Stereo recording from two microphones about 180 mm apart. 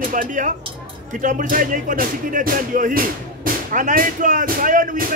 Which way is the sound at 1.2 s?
45° right (ahead or behind).